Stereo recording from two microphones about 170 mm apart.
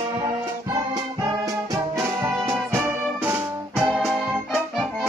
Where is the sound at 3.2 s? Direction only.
5° right (ahead or behind).